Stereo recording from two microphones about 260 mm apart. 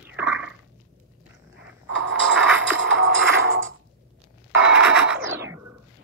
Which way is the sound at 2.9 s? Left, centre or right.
Right.